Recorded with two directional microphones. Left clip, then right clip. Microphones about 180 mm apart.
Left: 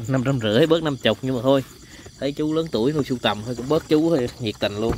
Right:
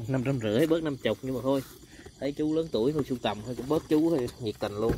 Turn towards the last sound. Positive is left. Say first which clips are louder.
# left 8 dB
turn(degrees=20)  # may be behind; listen again after turning